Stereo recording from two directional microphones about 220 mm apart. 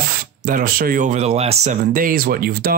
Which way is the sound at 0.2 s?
40° right (ahead or behind).